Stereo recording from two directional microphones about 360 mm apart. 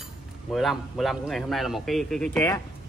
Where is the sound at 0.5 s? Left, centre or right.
Centre.